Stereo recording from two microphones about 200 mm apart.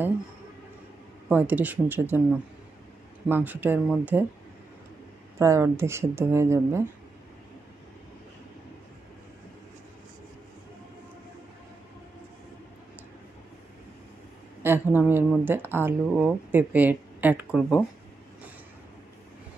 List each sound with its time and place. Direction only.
1.3 s speech: 10° right (ahead or behind)
3.3 s speech: 10° right (ahead or behind)
5.4 s speech: 15° right (ahead or behind)
14.6 s speech: 10° right (ahead or behind)